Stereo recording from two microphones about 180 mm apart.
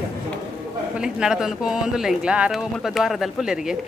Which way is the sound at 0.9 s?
5° right (ahead or behind).